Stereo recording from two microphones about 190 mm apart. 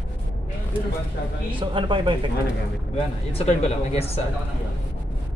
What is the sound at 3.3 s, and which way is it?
Speech, 35° left (ahead or behind).